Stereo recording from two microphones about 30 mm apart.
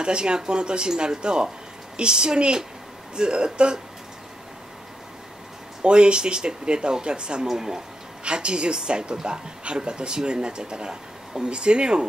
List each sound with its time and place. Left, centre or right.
0.0 s a woman's voice: right
5.8 s a woman's voice: right
7.4 s speech: centre
8.2 s a woman's voice: right